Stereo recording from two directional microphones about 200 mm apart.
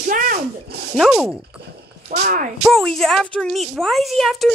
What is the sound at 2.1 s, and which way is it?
Speech, 50° right (ahead or behind).